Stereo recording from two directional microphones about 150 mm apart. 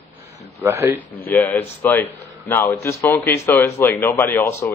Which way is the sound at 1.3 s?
10° left (ahead or behind).